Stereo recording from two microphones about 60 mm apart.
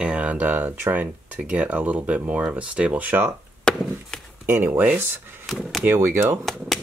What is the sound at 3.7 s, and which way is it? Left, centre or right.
Chop, centre.